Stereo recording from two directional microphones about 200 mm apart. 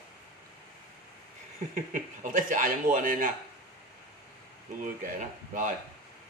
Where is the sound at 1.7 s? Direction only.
40° right (ahead or behind).